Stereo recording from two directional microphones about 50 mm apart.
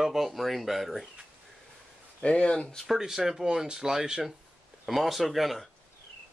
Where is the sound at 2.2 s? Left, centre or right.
Left.